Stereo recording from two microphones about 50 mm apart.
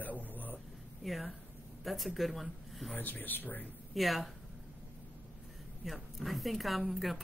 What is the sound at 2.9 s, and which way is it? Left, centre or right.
Speech, left.